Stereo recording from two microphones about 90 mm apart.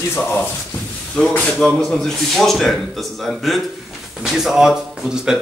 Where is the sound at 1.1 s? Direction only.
10° left (ahead or behind); by 5.3 s 5° right (ahead or behind).